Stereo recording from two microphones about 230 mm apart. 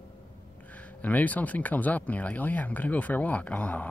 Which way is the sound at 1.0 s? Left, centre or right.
Centre.